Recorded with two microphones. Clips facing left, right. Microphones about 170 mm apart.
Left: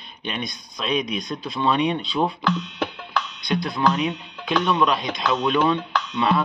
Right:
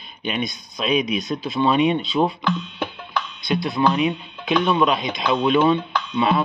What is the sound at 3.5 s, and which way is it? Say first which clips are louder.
Speech: right 2 dB; 5° right (ahead or behind).